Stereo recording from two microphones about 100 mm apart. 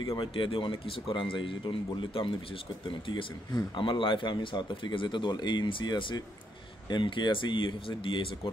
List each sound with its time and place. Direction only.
0.2 s speech: 60° left (ahead or behind)
3.7 s speech: 55° left (ahead or behind)